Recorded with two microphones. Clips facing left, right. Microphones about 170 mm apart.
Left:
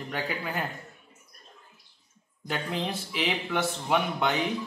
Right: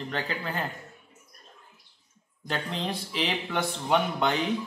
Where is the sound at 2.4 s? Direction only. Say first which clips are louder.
Even; 5° left (ahead or behind).